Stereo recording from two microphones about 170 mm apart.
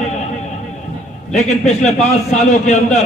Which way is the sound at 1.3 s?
40° left (ahead or behind).